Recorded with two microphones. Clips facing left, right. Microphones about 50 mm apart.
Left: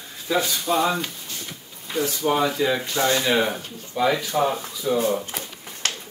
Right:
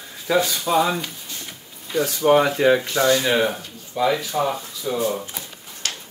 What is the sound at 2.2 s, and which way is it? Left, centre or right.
Speech, right.